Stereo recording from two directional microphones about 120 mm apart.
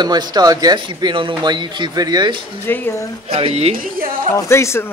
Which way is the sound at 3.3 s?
55° right (ahead or behind).